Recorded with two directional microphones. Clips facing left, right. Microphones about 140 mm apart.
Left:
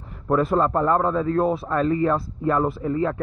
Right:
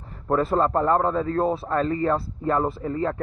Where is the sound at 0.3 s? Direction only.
35° right (ahead or behind).